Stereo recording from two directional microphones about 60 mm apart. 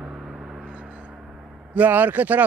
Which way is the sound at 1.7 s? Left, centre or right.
Right.